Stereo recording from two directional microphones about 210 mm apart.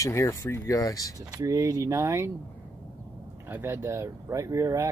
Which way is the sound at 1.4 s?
15° right (ahead or behind).